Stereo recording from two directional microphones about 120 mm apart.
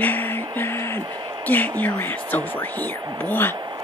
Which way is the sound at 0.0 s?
15° left (ahead or behind).